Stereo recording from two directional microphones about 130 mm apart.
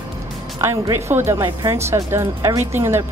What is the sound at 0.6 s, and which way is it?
Speech, 20° right (ahead or behind).